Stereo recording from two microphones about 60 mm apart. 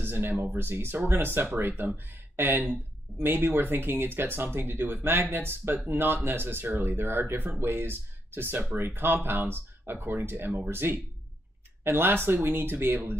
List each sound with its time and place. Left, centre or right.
0.0 s speech: right
9.9 s speech: right
10.2 s speech: right